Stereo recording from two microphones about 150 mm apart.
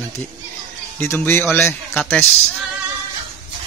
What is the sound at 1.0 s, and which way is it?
Speech, 15° left (ahead or behind).